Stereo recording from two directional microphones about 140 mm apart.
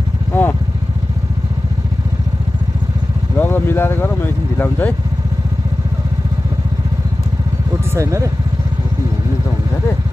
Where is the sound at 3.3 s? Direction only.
15° left (ahead or behind).